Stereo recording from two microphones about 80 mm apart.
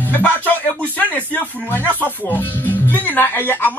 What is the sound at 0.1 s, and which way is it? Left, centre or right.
Speech, left.